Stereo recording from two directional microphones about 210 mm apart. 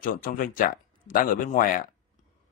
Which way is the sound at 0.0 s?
40° left (ahead or behind).